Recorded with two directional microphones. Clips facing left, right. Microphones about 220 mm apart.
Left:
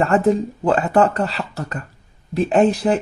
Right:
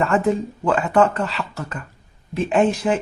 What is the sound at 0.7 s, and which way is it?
Speech, 35° left (ahead or behind).